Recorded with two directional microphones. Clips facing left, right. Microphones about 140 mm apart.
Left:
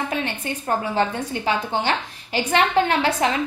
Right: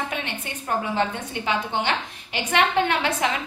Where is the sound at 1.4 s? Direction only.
35° left (ahead or behind).